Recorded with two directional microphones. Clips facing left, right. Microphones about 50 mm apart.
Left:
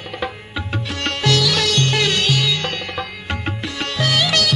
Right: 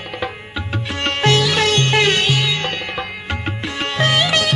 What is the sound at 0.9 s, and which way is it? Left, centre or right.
Music, right.